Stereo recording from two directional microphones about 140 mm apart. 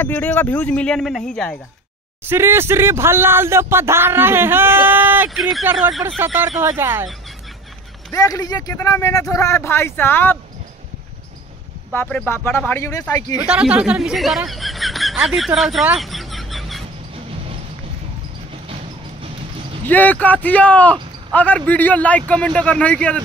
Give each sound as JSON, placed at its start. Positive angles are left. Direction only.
{"t": 0.0, "sound": "speech", "side_deg": 10}
{"t": 2.2, "sound": "speech", "side_deg": -15}
{"t": 8.1, "sound": "speech", "side_deg": 25}
{"t": 11.9, "sound": "speech", "side_deg": 15}
{"t": 13.5, "sound": "speech", "side_deg": -5}
{"t": 19.9, "sound": "speech", "side_deg": 10}